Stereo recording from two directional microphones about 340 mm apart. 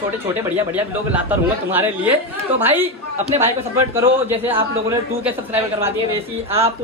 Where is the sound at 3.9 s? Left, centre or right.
Centre.